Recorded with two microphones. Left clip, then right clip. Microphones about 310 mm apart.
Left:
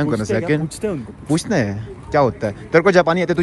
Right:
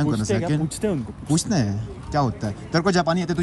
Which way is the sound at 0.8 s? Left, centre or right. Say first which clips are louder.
Right 2 dB; right.